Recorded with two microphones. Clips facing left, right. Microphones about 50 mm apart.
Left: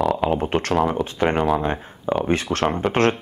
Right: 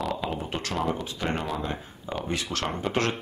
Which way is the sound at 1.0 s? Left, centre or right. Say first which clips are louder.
Left 10 dB; left.